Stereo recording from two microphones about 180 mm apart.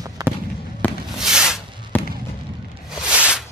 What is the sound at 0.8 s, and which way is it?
Fireworks, 10° left (ahead or behind).